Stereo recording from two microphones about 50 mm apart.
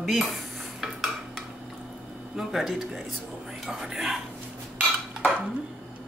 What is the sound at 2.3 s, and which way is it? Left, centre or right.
Speech, centre.